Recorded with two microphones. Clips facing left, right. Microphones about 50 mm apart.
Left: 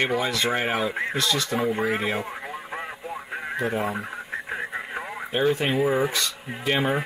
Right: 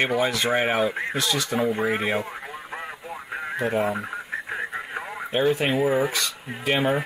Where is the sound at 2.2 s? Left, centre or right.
Centre.